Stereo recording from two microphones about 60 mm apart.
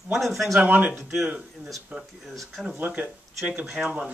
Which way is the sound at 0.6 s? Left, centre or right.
Right.